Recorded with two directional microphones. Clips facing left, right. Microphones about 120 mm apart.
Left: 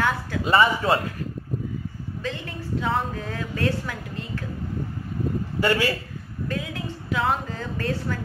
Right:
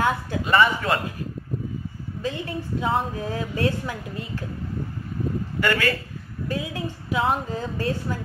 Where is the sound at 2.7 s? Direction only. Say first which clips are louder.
Right 1 dB; 20° right (ahead or behind).